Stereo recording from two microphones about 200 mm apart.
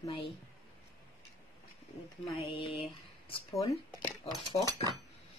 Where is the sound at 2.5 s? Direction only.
25° left (ahead or behind).